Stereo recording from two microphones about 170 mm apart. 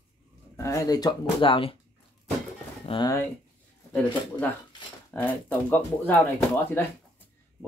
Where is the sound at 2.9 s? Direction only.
30° left (ahead or behind).